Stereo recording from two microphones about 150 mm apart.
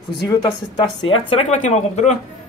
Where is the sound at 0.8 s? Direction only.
35° left (ahead or behind).